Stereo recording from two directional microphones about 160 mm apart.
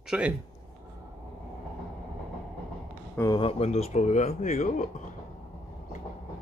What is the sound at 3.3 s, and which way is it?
Speech, 35° left (ahead or behind).